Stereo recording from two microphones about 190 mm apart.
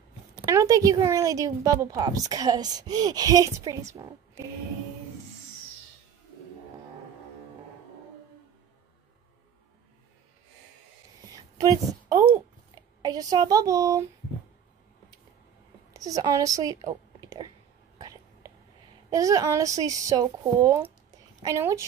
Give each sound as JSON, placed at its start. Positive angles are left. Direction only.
{"t": 0.5, "sound": "a woman's voice", "side_deg": -15}
{"t": 11.5, "sound": "a woman's voice", "side_deg": -20}
{"t": 15.9, "sound": "a woman's voice", "side_deg": -20}
{"t": 17.9, "sound": "whispering", "side_deg": -20}
{"t": 19.0, "sound": "speech", "side_deg": -20}